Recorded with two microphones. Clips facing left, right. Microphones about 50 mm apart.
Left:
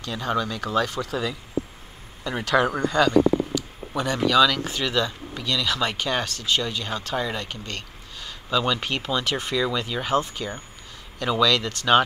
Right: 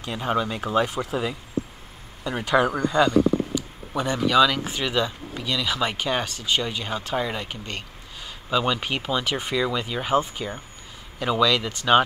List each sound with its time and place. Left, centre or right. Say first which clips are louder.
0.0 s speech: right 1 dB; right
0.8 s speech: right 1 dB; centre
3.5 s a sound: even; centre
4.3 s speech: even; centre